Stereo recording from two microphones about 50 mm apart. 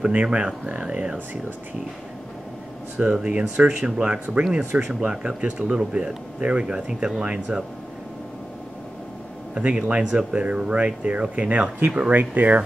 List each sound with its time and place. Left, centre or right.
0.2 s speech: right
3.0 s speech: centre
9.6 s speech: right
12.1 s speech: right